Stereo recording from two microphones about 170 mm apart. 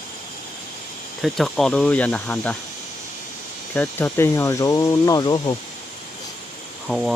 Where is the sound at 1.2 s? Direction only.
Centre (ahead or behind).